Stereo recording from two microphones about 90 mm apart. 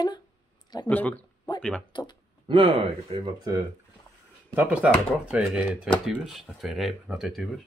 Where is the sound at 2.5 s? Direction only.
70° right (ahead or behind).